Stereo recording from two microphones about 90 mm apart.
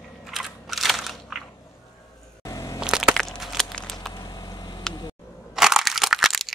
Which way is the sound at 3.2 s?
Centre (ahead or behind).